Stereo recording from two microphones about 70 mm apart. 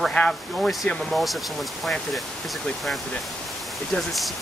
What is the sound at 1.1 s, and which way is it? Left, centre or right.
Speech, centre.